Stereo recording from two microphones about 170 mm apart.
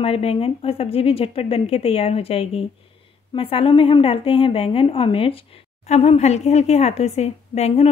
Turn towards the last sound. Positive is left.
turn(degrees=40)  # may be behind; listen again after turning